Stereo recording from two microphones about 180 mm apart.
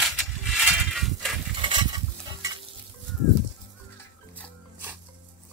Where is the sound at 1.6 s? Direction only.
25° right (ahead or behind).